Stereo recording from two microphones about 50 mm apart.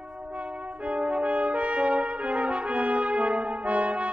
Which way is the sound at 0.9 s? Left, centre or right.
Right.